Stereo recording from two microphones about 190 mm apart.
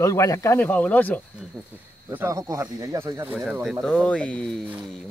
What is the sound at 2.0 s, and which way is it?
Speech, 15° right (ahead or behind).